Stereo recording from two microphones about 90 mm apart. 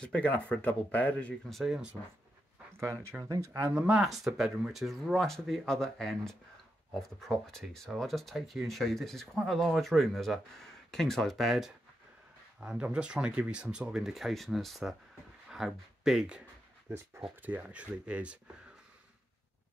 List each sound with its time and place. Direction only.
0.0 s speech: 15° left (ahead or behind)
1.5 s speech: 5° right (ahead or behind)
2.8 s speech: 30° right (ahead or behind)
3.6 s speech: 15° right (ahead or behind)
4.1 s speech: centre (ahead or behind)
12.5 s speech: 10° right (ahead or behind)